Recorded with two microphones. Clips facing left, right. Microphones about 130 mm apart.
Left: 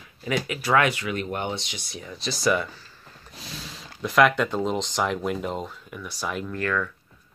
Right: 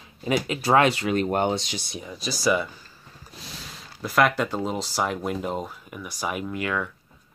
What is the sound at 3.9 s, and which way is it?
Speech, 5° right (ahead or behind).